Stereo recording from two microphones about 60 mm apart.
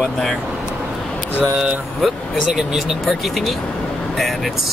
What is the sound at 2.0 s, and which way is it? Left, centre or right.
Speech, centre.